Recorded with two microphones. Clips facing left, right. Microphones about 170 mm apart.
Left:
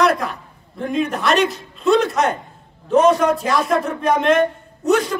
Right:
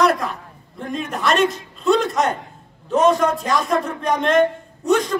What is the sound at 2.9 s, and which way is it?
A man's voice, centre (ahead or behind).